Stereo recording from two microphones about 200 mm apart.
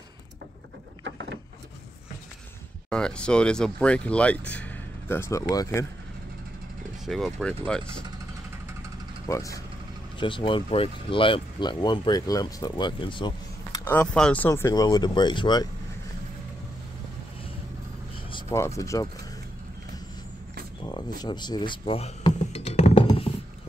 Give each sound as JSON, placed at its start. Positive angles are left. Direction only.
{"t": 1.0, "sound": "vehicle", "side_deg": -60}
{"t": 2.9, "sound": "speech", "side_deg": 5}
{"t": 7.1, "sound": "speech", "side_deg": 0}
{"t": 9.3, "sound": "speech", "side_deg": 15}
{"t": 18.3, "sound": "a sound", "side_deg": 15}
{"t": 18.8, "sound": "speech", "side_deg": 15}
{"t": 20.8, "sound": "a sound", "side_deg": 20}